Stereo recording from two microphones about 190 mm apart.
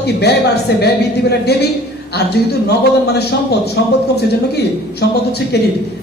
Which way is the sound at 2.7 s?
60° left (ahead or behind).